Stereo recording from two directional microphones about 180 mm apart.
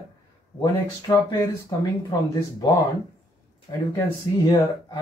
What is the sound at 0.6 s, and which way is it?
Speech, 25° left (ahead or behind).